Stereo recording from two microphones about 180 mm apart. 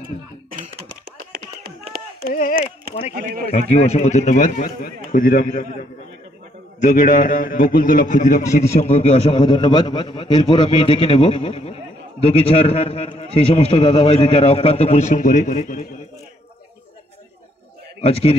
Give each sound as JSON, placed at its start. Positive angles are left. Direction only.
{"t": 1.3, "sound": "music", "side_deg": -60}
{"t": 2.2, "sound": "a man's voice", "side_deg": 50}
{"t": 3.7, "sound": "a man's voice", "side_deg": 35}
{"t": 18.0, "sound": "a man's voice", "side_deg": 30}